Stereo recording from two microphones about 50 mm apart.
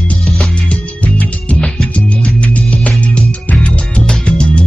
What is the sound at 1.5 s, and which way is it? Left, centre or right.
Music, centre.